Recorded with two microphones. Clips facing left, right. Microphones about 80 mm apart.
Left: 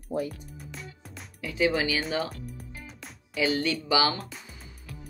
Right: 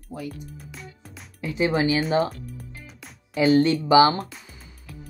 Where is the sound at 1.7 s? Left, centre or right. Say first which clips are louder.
Right 6 dB; right.